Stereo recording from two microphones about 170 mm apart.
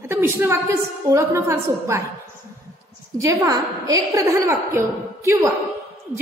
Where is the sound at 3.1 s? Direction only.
20° right (ahead or behind).